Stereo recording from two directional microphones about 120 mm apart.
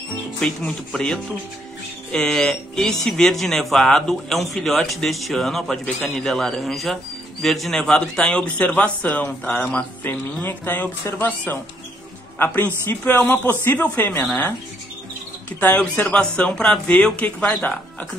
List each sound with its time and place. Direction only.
0.4 s a man's voice: 5° left (ahead or behind)
15.6 s a man's voice: 10° left (ahead or behind)